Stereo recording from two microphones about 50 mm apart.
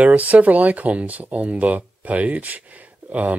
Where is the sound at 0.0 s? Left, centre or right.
Right.